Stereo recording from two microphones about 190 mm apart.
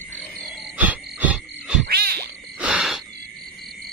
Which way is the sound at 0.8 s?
10° right (ahead or behind).